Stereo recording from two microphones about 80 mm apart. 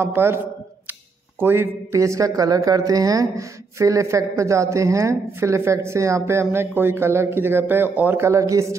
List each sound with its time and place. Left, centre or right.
0.0 s speech: right
1.4 s speech: right
2.0 s speech: right
8.2 s speech: right